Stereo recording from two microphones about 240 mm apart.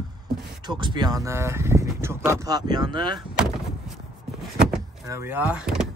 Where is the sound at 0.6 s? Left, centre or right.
Centre.